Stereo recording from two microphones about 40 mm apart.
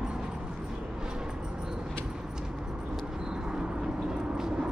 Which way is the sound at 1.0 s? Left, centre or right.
Centre.